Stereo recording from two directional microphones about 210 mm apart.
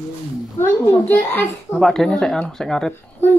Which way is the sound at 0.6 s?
10° left (ahead or behind).